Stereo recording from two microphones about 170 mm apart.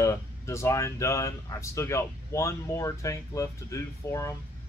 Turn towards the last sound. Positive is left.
turn(degrees=20)  # may be behind; listen again after turning